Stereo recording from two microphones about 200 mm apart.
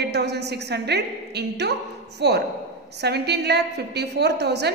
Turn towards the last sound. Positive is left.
turn(degrees=-55)  # may be behind; listen again after turning